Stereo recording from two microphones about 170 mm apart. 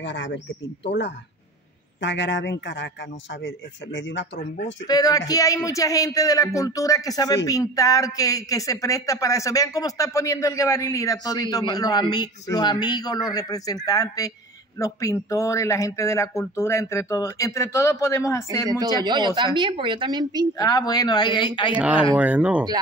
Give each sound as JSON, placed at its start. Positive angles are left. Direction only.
{"t": 0.0, "sound": "a man's voice", "side_deg": 90}
{"t": 4.8, "sound": "a man's voice", "side_deg": 20}
{"t": 18.7, "sound": "a woman's voice", "side_deg": -25}
{"t": 20.5, "sound": "a man's voice", "side_deg": 20}
{"t": 21.7, "sound": "speech", "side_deg": -10}